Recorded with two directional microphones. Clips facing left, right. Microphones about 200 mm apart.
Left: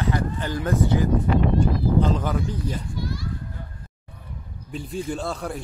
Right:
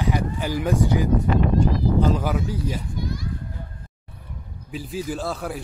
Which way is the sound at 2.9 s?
20° right (ahead or behind).